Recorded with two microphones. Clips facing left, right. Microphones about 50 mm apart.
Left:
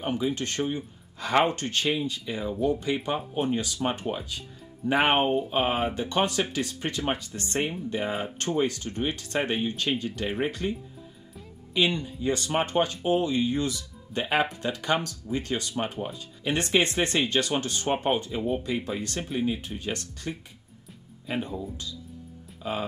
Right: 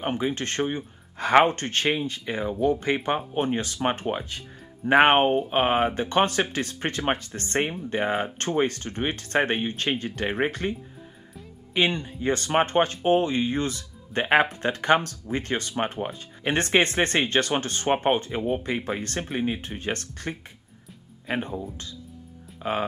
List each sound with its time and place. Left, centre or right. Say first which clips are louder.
0.0 s speech: right 1 dB; right
22.6 s speech: right 4 dB; right